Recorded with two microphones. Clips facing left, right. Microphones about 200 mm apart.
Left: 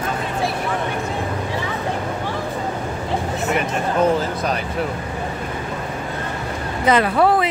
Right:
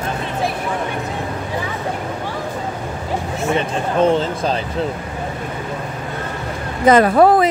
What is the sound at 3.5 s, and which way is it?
Speech, 25° right (ahead or behind).